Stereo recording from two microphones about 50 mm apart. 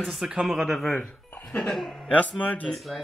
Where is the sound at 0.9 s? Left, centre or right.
Left.